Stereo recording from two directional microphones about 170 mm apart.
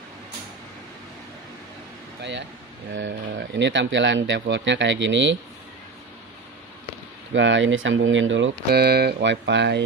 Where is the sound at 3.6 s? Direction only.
90° right.